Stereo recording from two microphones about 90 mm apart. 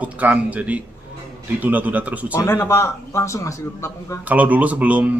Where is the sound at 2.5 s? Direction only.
30° left (ahead or behind).